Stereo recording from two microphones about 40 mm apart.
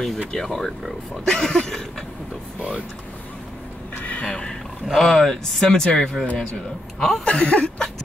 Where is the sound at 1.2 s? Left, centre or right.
Centre.